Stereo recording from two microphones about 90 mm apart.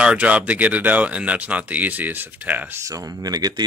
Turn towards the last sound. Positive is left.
turn(degrees=-45)  # may be behind; listen again after turning